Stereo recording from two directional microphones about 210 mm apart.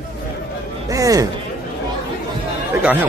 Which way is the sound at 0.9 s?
15° right (ahead or behind).